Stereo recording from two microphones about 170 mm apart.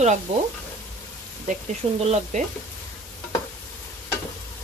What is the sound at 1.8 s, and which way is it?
Speech, 35° right (ahead or behind).